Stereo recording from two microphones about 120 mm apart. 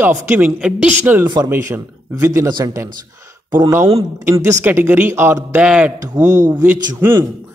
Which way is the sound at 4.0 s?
25° right (ahead or behind).